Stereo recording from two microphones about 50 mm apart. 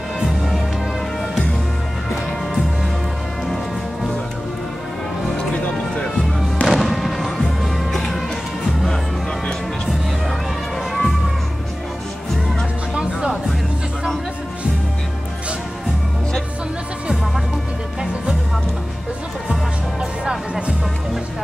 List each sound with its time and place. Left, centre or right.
5.4 s music: centre
6.6 s music: centre
10.9 s music: centre
20.2 s music: centre